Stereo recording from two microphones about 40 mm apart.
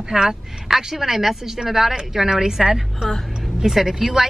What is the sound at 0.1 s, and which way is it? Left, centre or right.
Speech, centre.